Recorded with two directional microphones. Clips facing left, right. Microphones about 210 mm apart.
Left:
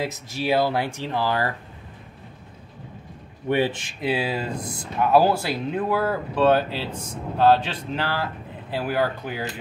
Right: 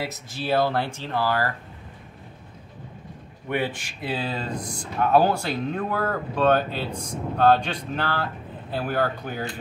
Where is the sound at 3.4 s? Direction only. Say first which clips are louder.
Left 5 dB; 25° left (ahead or behind).